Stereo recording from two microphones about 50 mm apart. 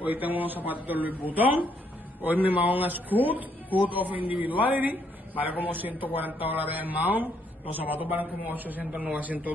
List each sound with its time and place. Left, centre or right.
0.0 s a man's voice: right